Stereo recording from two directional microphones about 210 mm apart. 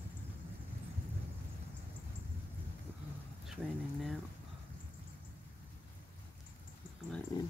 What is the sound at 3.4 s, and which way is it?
Speech, centre (ahead or behind).